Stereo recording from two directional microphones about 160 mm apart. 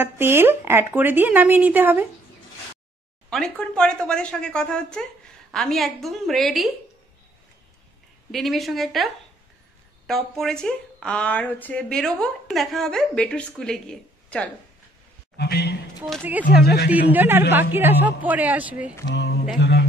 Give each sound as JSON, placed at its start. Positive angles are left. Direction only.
{"t": 0.0, "sound": "speech", "side_deg": -15}
{"t": 3.3, "sound": "speech", "side_deg": 0}
{"t": 8.3, "sound": "speech", "side_deg": 0}
{"t": 15.3, "sound": "a man's voice", "side_deg": 90}
{"t": 16.2, "sound": "speech", "side_deg": -10}
{"t": 16.6, "sound": "speech", "side_deg": 85}
{"t": 17.1, "sound": "speech", "side_deg": -15}
{"t": 19.0, "sound": "a sound", "side_deg": 90}